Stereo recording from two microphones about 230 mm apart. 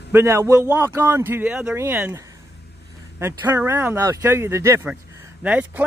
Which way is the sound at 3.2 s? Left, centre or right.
Centre.